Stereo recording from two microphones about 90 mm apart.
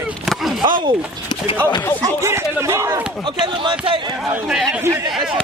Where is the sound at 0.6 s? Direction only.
60° right (ahead or behind).